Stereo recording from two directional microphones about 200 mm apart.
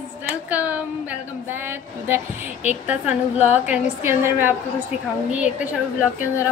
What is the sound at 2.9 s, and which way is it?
A woman's voice, 10° right (ahead or behind).